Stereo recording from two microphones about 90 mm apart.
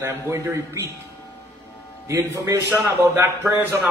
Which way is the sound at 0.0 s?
30° right (ahead or behind).